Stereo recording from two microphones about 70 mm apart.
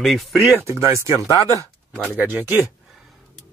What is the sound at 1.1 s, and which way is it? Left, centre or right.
Speech, left.